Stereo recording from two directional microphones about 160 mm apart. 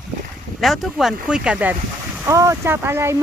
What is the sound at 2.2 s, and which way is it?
Speech, 20° right (ahead or behind).